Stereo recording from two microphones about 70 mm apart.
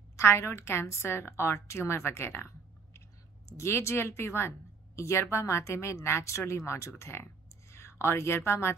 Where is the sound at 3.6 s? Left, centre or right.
Left.